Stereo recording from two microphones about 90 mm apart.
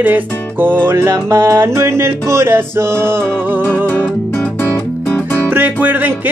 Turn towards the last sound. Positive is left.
turn(degrees=-20)  # may be behind; listen again after turning